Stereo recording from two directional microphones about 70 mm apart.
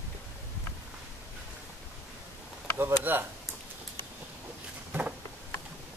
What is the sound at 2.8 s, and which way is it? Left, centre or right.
Speech, right.